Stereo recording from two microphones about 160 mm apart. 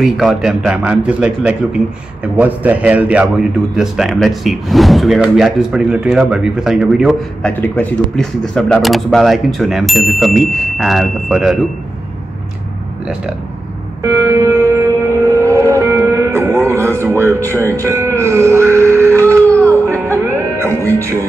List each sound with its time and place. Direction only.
0.0 s a man's voice: centre (ahead or behind)
7.4 s a man's voice: 10° left (ahead or behind)
14.0 s music: 20° right (ahead or behind)
17.0 s a sound: 15° right (ahead or behind)
17.6 s music: 15° right (ahead or behind)